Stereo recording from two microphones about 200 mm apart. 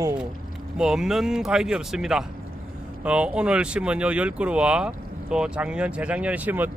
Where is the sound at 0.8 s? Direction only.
5° right (ahead or behind).